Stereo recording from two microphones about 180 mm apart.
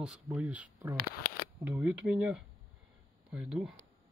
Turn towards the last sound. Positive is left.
turn(degrees=0)  # may be behind; listen again after turning